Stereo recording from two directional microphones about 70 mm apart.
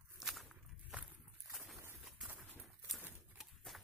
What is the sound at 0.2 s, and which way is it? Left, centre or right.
Walk, centre.